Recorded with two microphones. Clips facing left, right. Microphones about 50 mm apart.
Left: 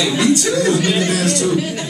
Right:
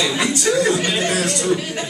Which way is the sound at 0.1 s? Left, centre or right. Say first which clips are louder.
Left 3 dB; centre.